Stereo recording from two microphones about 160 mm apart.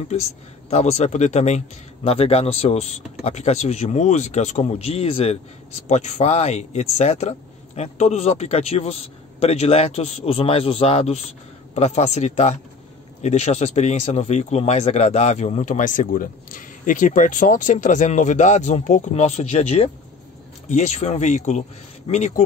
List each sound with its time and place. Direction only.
0.1 s speech: 45° left (ahead or behind)